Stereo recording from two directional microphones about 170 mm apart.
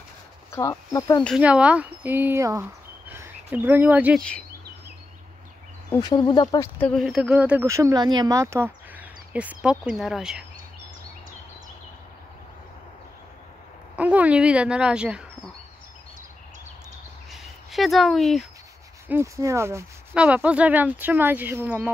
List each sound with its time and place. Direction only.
0.5 s speech: 20° left (ahead or behind)
1.2 s speech: 5° right (ahead or behind)
4.2 s speech: 5° left (ahead or behind)
5.9 s speech: 25° left (ahead or behind)
6.8 s speech: centre (ahead or behind)
13.9 s speech: 10° right (ahead or behind)
17.3 s a sound: centre (ahead or behind)
19.0 s speech: 15° right (ahead or behind)